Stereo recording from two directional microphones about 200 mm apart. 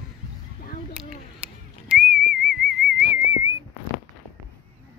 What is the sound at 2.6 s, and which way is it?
Whistling, 55° right (ahead or behind).